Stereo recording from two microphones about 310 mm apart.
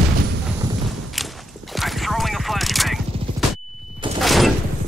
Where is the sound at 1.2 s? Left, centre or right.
Centre.